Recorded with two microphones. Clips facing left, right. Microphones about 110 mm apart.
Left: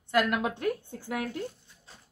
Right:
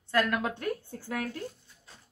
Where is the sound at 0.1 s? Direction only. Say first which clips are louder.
Left 1 dB; 15° left (ahead or behind).